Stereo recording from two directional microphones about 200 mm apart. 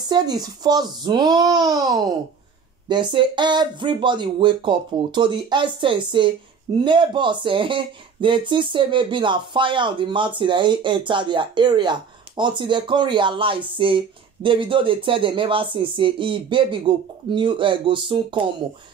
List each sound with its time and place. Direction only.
0.0 s speech: 20° right (ahead or behind)